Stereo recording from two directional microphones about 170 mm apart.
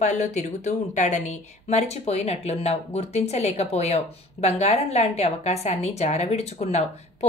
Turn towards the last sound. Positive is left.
turn(degrees=40)  # may be behind; listen again after turning